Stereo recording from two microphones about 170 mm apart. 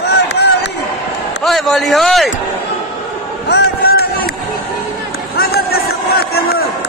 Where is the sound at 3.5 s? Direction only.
70° left (ahead or behind).